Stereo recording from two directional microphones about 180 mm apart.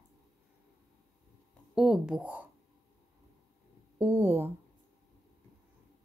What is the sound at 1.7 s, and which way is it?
Speech, centre (ahead or behind).